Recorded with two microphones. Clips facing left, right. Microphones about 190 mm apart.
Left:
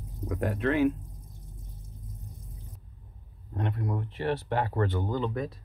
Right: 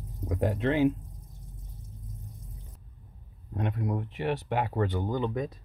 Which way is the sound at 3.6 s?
15° right (ahead or behind).